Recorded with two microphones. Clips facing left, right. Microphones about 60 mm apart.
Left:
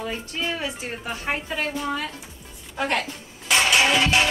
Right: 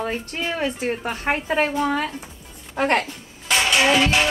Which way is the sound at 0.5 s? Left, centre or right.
Right.